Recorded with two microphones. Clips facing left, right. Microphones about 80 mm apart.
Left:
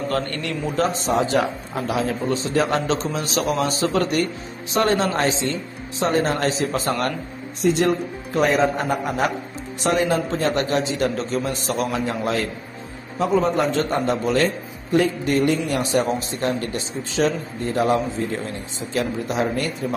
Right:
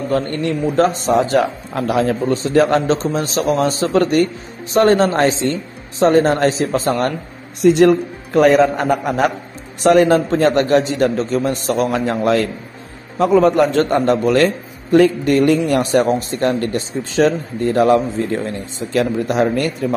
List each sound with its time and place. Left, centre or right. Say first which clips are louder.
0.1 s a man's voice: right 6 dB; right
0.7 s a man's voice: right 5 dB; right
7.6 s a man's voice: right 8 dB; right
10.3 s a man's voice: right 8 dB; right
13.2 s a man's voice: right 7 dB; right